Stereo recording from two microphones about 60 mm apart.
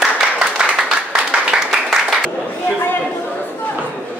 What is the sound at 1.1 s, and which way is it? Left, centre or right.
Applause, centre.